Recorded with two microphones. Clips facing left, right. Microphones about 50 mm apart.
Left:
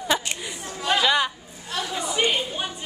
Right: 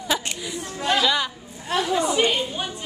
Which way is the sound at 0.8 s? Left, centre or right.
Centre.